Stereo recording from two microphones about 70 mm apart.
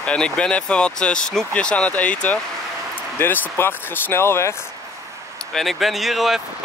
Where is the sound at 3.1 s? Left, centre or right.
Left.